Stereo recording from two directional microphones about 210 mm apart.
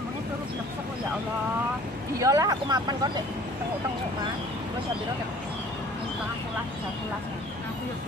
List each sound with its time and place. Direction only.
2.1 s speech: 15° right (ahead or behind)